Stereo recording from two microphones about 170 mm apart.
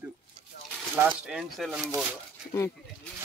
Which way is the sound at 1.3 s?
5° right (ahead or behind).